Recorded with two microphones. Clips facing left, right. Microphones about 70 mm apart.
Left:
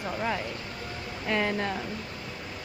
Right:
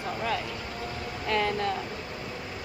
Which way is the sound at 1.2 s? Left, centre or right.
Left.